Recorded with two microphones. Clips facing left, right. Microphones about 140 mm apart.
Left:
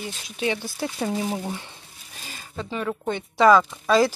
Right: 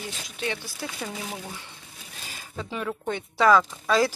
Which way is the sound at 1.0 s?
35° left (ahead or behind).